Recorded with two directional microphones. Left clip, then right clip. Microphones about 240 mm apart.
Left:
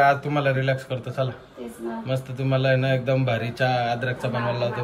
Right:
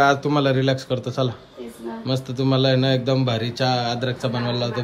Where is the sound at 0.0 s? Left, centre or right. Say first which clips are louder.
Right 2 dB; centre.